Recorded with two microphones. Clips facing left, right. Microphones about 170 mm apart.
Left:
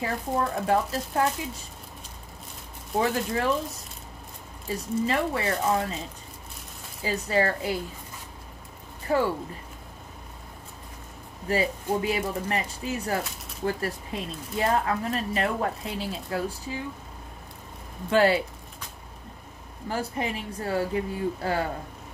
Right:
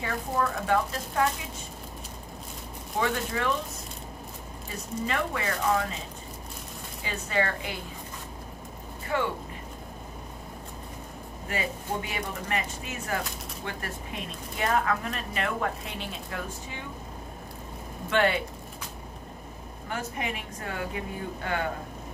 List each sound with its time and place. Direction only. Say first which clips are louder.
0.0 s speech: left 1 dB; 35° left (ahead or behind)
3.0 s speech: left 3 dB; 35° left (ahead or behind)
4.6 s speech: left 6 dB; 35° left (ahead or behind)
7.1 s speech: left 4 dB; 35° left (ahead or behind)
9.1 s speech: left 5 dB; 35° left (ahead or behind)
11.4 s speech: left 6 dB; 35° left (ahead or behind)
18.1 s speech: left 4 dB; 35° left (ahead or behind)
19.9 s speech: left 4 dB; 35° left (ahead or behind)